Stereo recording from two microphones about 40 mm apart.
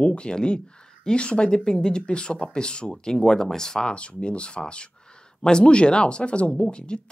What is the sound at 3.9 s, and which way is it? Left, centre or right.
Speech, left.